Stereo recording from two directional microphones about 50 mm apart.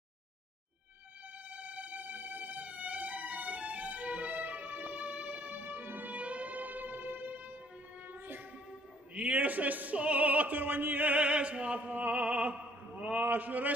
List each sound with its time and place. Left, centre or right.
1.5 s music: right
9.1 s opera: right
11.9 s speech: right